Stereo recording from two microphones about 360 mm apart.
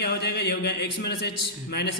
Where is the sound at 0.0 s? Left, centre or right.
Left.